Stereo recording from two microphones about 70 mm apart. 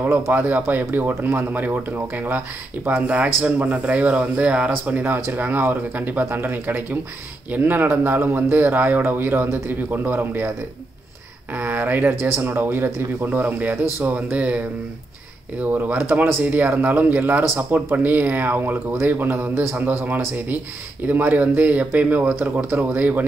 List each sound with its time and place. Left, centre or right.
0.0 s speech: right
11.5 s speech: right
15.6 s speech: right
16.4 s speech: right